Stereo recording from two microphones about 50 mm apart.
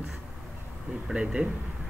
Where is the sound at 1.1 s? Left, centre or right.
Centre.